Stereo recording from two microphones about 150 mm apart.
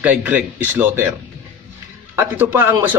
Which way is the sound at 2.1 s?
15° right (ahead or behind).